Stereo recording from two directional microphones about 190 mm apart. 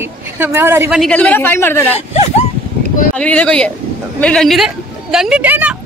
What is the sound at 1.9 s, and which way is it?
Speech, 35° left (ahead or behind).